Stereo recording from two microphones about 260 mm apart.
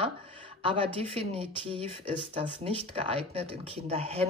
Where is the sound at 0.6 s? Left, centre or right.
Centre.